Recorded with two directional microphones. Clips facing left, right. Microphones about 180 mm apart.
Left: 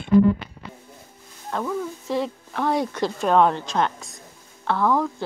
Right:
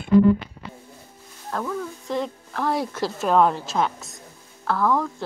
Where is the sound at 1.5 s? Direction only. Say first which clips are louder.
Left 2 dB; 5° left (ahead or behind).